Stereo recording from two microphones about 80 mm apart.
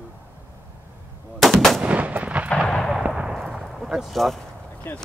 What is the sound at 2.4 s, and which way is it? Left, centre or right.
Artillery fire, centre.